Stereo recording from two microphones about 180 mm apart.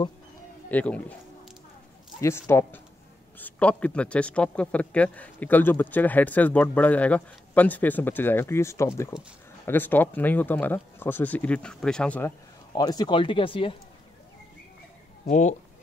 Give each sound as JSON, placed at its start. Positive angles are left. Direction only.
{"t": 0.7, "sound": "a man's voice", "side_deg": 10}
{"t": 2.2, "sound": "a man's voice", "side_deg": 15}
{"t": 12.7, "sound": "speech", "side_deg": 20}
{"t": 15.2, "sound": "speech", "side_deg": 45}